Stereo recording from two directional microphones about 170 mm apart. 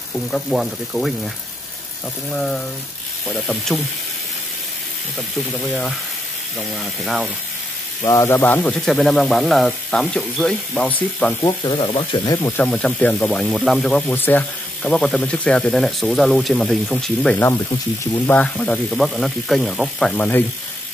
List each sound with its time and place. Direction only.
0.1 s speech: centre (ahead or behind)
2.3 s speech: 5° left (ahead or behind)
5.5 s speech: centre (ahead or behind)
8.0 s speech: 15° left (ahead or behind)
11.4 s speech: 25° left (ahead or behind)
12.4 s speech: 15° left (ahead or behind)